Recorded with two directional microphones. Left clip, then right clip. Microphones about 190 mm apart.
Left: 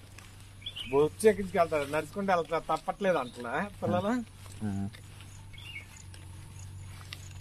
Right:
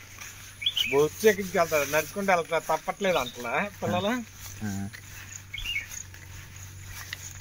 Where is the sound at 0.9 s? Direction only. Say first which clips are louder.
Right 1 dB; 30° right (ahead or behind).